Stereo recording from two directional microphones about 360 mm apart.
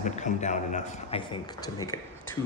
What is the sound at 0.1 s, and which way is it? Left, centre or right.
A man's voice, centre.